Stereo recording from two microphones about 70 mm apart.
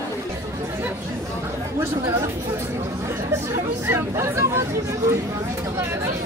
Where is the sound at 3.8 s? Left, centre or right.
Right.